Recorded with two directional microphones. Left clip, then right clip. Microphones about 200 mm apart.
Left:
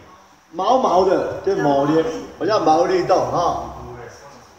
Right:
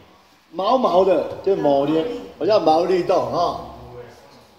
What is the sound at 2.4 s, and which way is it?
Speech, 25° right (ahead or behind).